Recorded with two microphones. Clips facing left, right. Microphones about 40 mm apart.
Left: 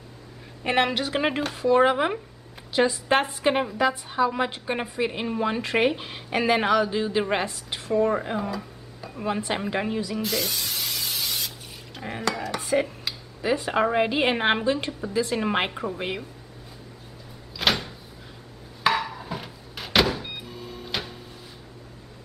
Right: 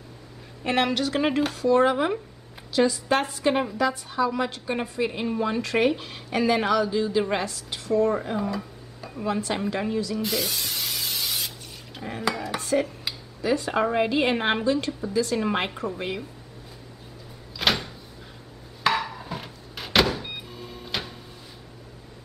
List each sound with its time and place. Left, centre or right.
0.7 s a woman's voice: centre
8.5 s dishes: centre
9.2 s a woman's voice: centre
10.2 s spray: centre
12.0 s stir: centre
12.5 s dishes: centre
13.4 s a woman's voice: centre
17.6 s door: centre
18.9 s a sound: centre